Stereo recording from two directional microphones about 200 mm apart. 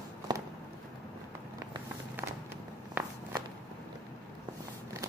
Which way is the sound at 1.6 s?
15° right (ahead or behind).